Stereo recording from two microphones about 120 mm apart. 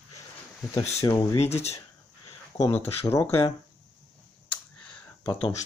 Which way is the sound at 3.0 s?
25° left (ahead or behind).